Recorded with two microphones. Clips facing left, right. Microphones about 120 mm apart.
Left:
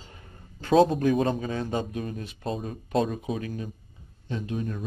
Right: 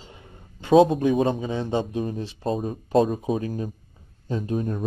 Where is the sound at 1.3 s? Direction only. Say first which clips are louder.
Right 3 dB; 20° right (ahead or behind).